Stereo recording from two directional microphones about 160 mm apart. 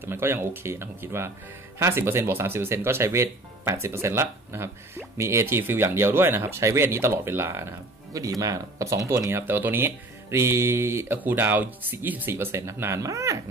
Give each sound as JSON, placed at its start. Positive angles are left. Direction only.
{"t": 0.0, "sound": "speech", "side_deg": -15}